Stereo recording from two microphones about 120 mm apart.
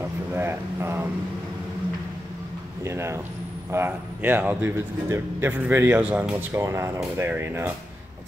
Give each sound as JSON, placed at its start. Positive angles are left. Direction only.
{"t": 0.3, "sound": "speech", "side_deg": -20}
{"t": 2.8, "sound": "a man's voice", "side_deg": -20}
{"t": 6.3, "sound": "speech", "side_deg": -25}